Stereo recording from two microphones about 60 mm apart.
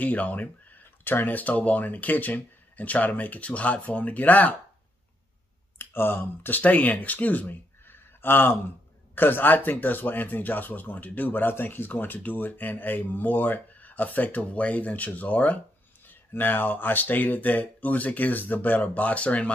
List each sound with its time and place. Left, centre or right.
0.0 s speech: left
5.8 s speech: left